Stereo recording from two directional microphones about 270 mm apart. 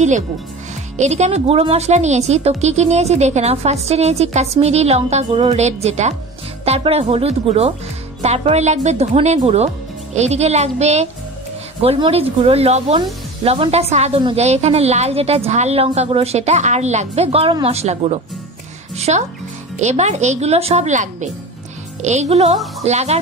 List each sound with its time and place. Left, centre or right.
0.9 s speech: right